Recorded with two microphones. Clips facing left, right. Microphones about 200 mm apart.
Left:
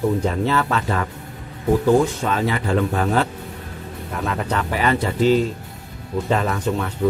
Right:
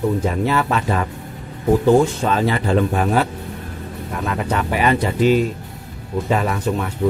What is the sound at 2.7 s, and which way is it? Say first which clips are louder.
Speech: right 1 dB; 15° right (ahead or behind).